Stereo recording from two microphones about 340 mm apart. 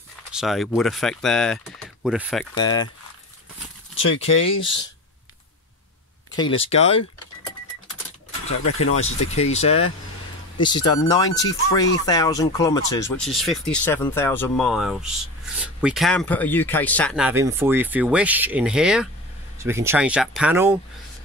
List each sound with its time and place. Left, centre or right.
0.3 s speech: centre
2.5 s speech: centre
4.2 s speech: centre
6.3 s speech: centre
8.9 s speech: centre
11.1 s speech: centre